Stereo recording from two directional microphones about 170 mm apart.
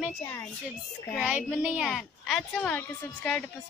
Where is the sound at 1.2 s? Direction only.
10° right (ahead or behind).